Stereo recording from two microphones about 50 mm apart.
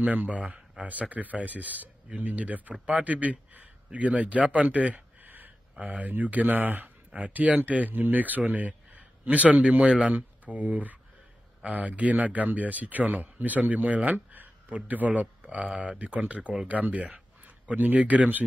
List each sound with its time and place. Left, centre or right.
0.0 s speech: right
5.2 s a sound: right
5.8 s speech: right
7.1 s speech: right
10.1 s speech: right